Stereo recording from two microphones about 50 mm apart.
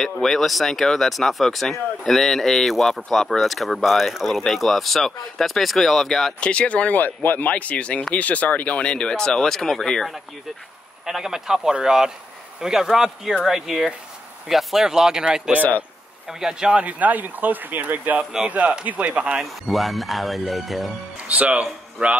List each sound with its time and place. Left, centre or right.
0.0 s speech: centre
6.4 s speech: left; by 10.1 s centre
11.1 s speech: centre
16.8 s speech: right
19.7 s speech: centre
21.3 s speech: right